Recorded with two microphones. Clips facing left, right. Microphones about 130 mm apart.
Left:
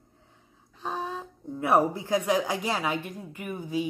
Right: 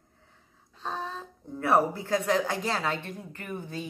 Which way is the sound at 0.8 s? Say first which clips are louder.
Left 2 dB; 10° left (ahead or behind).